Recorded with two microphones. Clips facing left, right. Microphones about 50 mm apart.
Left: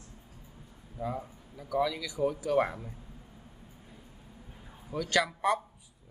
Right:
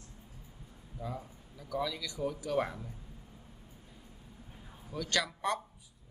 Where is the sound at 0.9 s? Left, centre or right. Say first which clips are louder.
Left 6 dB; centre.